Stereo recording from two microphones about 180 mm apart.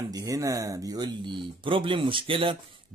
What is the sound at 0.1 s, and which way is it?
Speech, 20° right (ahead or behind).